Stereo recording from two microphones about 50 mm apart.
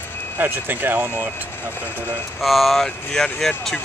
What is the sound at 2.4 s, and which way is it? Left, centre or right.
Speech, centre.